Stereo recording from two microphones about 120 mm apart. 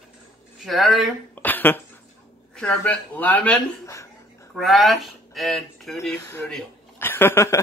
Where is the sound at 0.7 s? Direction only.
Centre (ahead or behind).